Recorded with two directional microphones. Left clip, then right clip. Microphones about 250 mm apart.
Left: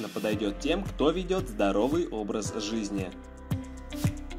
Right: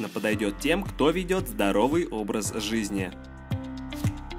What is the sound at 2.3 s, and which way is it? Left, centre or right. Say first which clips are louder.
Speech: right 2 dB; right.